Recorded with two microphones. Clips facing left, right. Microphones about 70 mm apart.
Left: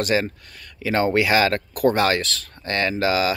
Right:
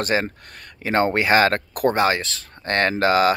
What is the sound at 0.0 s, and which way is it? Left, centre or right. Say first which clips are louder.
Speech: left 1 dB; right.